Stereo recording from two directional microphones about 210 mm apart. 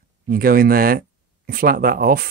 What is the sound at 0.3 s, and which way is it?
Speech, 45° right (ahead or behind).